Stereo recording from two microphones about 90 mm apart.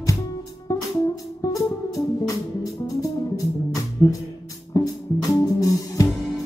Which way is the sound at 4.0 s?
60° left (ahead or behind).